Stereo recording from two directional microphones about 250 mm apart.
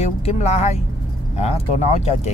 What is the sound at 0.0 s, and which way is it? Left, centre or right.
Speech, left.